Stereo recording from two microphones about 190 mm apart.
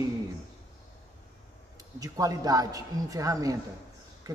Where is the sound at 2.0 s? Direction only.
20° right (ahead or behind).